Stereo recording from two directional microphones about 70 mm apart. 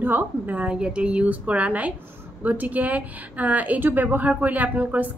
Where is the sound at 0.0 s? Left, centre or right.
Right.